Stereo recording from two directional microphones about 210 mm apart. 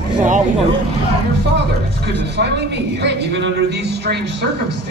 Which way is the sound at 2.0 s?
55° right (ahead or behind).